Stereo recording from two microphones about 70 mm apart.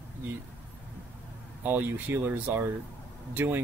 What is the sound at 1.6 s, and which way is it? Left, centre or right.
Speech, right.